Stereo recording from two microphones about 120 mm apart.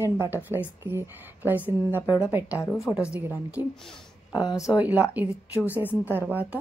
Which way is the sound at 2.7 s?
5° right (ahead or behind).